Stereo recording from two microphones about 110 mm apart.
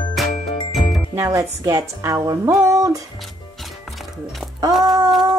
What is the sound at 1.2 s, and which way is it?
Speech, 30° right (ahead or behind).